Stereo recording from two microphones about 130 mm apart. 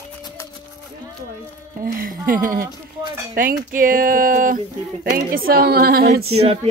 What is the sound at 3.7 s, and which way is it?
Speech, 90° right.